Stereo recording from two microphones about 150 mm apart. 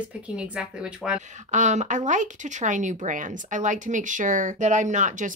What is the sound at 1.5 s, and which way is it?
Speech, 55° right (ahead or behind).